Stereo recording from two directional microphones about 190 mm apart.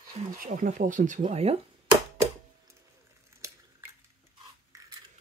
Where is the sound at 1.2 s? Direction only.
30° right (ahead or behind).